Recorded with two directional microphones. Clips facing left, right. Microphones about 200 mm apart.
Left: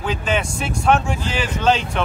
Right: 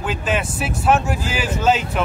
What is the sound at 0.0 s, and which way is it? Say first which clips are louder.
A man's voice: even; 5° right (ahead or behind).